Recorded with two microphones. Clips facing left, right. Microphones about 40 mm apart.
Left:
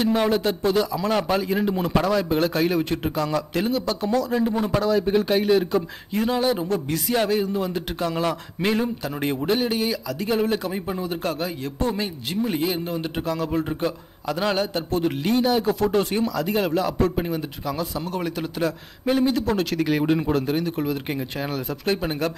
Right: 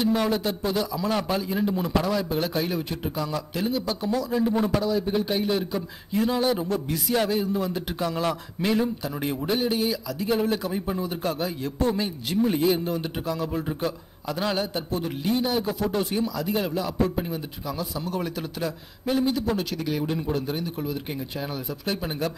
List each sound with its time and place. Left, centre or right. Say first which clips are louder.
0.0 s speech: left 3 dB; left
4.8 s a man's voice: left 4 dB; left
5.8 s a man's voice: left 2 dB; left
8.2 s a man's voice: left 2 dB; left
9.0 s a man's voice: left 3 dB; left